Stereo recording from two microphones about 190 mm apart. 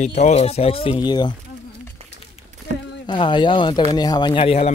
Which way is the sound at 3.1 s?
25° left (ahead or behind).